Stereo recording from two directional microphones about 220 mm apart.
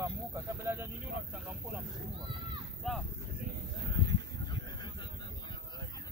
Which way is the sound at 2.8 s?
Centre (ahead or behind).